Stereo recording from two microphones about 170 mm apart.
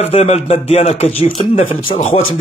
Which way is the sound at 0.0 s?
40° left (ahead or behind).